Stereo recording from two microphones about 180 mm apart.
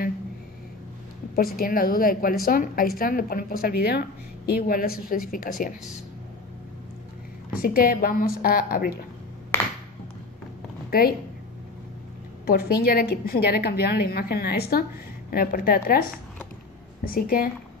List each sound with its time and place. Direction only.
1.3 s a woman's voice: 55° left (ahead or behind)
7.5 s a woman's voice: 55° left (ahead or behind)
10.9 s a woman's voice: 55° left (ahead or behind)
12.4 s a woman's voice: 55° left (ahead or behind)